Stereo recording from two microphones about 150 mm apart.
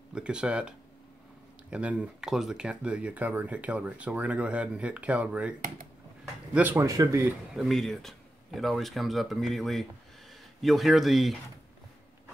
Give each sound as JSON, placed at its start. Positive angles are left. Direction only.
{"t": 0.1, "sound": "speech", "side_deg": -5}
{"t": 6.5, "sound": "speech", "side_deg": -15}
{"t": 7.5, "sound": "speech", "side_deg": 0}